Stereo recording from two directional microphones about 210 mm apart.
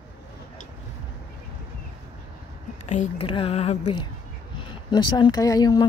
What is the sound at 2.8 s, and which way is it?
A woman's voice, 35° left (ahead or behind).